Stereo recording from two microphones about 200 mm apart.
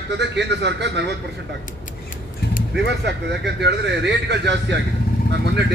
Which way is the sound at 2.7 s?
60° right (ahead or behind).